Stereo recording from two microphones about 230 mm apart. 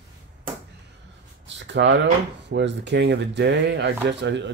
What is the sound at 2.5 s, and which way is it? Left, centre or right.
Speech, right.